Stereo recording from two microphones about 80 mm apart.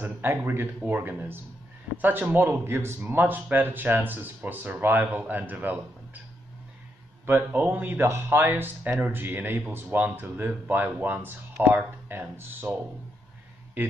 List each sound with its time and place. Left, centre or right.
0.0 s speech: right
7.2 s speech: right